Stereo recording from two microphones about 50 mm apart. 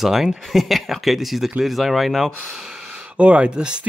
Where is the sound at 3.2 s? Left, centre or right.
Right.